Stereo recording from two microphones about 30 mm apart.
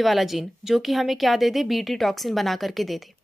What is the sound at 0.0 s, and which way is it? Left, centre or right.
A woman's voice, centre.